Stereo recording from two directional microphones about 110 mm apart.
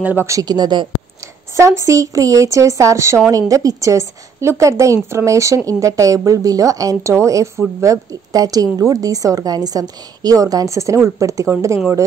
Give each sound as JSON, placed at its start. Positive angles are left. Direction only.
{"t": 0.0, "sound": "speech", "side_deg": -15}
{"t": 0.3, "sound": "a woman's voice", "side_deg": -35}
{"t": 1.2, "sound": "a woman's voice", "side_deg": -30}